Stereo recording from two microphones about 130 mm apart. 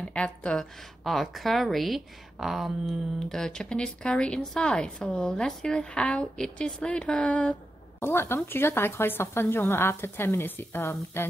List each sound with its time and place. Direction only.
0.1 s a woman's voice: 10° left (ahead or behind)